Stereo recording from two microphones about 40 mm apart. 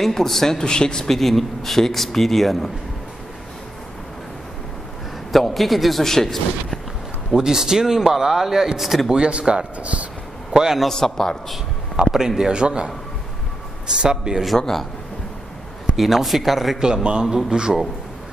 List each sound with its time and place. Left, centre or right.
0.0 s a man's voice: centre
1.1 s speech: centre
5.3 s speech: centre
7.3 s speech: centre
9.1 s speech: right
9.8 s speech: right
10.5 s a man's voice: centre
11.0 s a man's voice: centre
12.0 s speech: centre
16.0 s speech: centre
16.8 s speech: right